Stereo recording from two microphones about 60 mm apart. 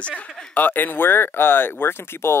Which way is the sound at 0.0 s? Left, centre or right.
Left.